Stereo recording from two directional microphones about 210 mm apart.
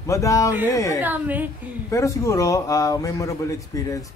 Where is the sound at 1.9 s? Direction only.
15° left (ahead or behind).